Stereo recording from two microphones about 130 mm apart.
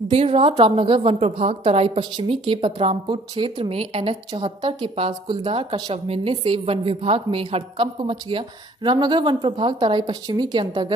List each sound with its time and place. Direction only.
0.1 s a woman's voice: 50° right (ahead or behind); by 10.9 s 35° right (ahead or behind)